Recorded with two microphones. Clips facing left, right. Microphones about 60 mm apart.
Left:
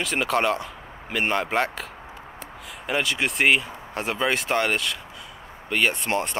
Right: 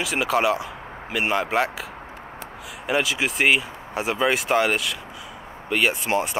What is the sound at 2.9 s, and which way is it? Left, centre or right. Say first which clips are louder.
Speech: right 2 dB; centre.